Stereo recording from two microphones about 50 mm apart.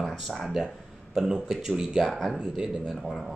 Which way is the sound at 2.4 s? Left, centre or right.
Centre.